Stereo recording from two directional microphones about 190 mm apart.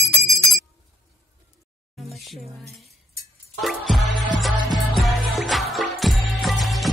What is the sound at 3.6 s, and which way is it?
Music, centre (ahead or behind).